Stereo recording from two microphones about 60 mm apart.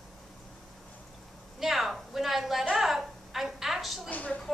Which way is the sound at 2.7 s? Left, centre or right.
Centre.